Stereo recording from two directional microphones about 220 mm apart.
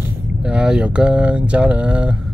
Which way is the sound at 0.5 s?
5° right (ahead or behind).